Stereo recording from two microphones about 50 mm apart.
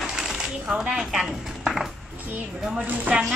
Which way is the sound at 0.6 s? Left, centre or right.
Centre.